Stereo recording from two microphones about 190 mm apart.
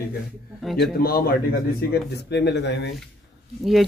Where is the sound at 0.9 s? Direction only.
50° left (ahead or behind).